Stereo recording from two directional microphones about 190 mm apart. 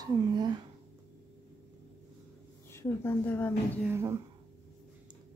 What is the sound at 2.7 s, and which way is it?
Speech, 15° left (ahead or behind).